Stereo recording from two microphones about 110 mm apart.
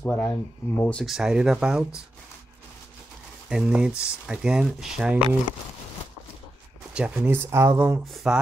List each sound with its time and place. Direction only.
0.0 s speech: 15° left (ahead or behind)
1.0 s speech: 5° right (ahead or behind)
3.4 s speech: 5° right (ahead or behind)
6.9 s speech: 10° right (ahead or behind)
8.1 s speech: 5° right (ahead or behind)